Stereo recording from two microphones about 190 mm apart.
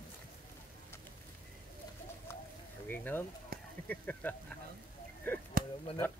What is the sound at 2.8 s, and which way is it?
Speech, 10° left (ahead or behind).